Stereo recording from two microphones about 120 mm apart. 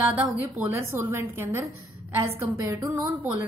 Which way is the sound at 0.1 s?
15° right (ahead or behind).